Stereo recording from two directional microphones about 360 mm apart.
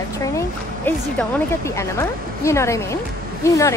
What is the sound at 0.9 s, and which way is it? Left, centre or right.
Speech, centre.